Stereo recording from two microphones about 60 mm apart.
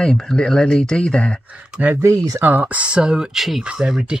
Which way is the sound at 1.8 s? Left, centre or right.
Right.